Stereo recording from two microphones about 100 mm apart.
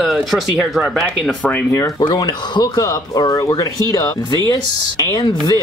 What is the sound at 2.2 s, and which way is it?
Speech, 45° left (ahead or behind).